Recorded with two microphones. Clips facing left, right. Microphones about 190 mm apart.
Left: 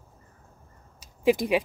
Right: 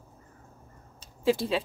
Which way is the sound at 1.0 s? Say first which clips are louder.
Left 3 dB; 15° left (ahead or behind).